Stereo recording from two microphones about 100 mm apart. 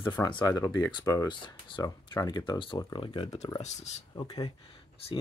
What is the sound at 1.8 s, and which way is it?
Speech, 40° left (ahead or behind).